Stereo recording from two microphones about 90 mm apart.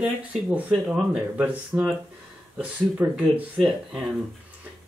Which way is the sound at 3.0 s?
20° right (ahead or behind).